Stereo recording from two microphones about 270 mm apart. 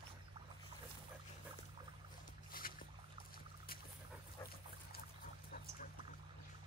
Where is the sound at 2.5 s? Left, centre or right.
Left.